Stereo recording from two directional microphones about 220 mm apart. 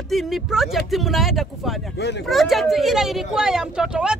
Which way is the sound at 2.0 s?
50° left (ahead or behind).